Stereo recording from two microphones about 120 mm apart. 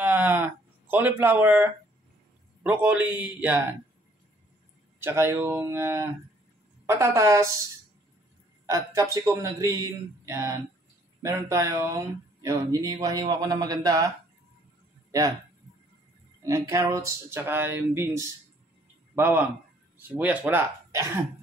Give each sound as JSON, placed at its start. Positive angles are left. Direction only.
{"t": 0.0, "sound": "a sound", "side_deg": -15}
{"t": 2.6, "sound": "speech", "side_deg": -15}
{"t": 5.0, "sound": "speech", "side_deg": -20}
{"t": 8.6, "sound": "speech", "side_deg": -25}
{"t": 16.4, "sound": "speech", "side_deg": -25}